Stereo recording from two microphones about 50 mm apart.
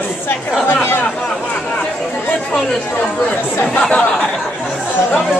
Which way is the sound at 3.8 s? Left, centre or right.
Centre.